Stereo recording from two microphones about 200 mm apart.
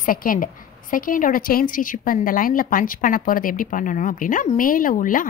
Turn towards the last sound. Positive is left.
turn(degrees=45)  # may be behind; listen again after turning